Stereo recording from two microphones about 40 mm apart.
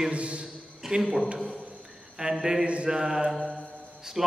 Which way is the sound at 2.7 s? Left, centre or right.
Right.